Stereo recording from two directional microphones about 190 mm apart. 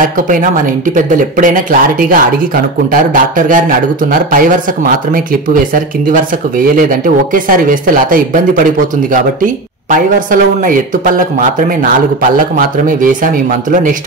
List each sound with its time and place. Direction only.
0.0 s speech: 45° right (ahead or behind)